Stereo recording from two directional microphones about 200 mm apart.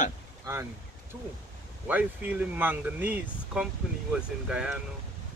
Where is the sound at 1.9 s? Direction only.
5° right (ahead or behind).